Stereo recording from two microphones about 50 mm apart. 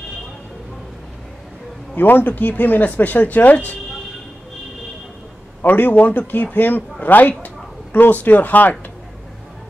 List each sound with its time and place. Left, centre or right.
2.0 s speech: left
5.6 s speech: left